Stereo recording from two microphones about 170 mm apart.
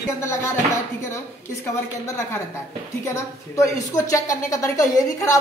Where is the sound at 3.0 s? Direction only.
15° left (ahead or behind).